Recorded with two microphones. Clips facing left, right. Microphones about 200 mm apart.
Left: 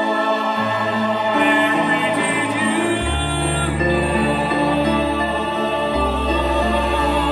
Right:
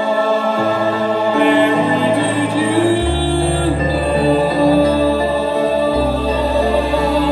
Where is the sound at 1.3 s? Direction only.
35° right (ahead or behind).